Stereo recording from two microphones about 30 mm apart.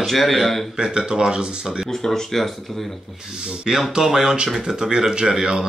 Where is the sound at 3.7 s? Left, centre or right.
Centre.